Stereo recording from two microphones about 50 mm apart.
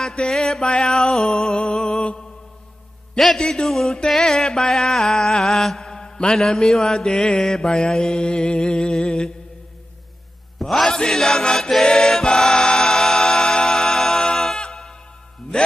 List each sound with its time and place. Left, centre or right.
0.0 s mantra: centre
1.6 s music: centre
3.2 s a man's voice: centre
4.1 s mantra: centre
10.6 s mantra: centre
11.8 s choir: centre
14.7 s music: centre
15.5 s music: centre